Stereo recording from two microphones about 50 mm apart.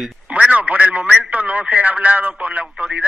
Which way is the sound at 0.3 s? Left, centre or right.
Right.